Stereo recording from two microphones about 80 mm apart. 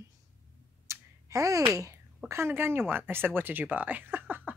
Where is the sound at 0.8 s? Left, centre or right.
Right.